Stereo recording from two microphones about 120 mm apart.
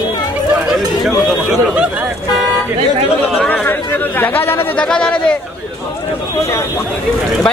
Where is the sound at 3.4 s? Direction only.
15° left (ahead or behind).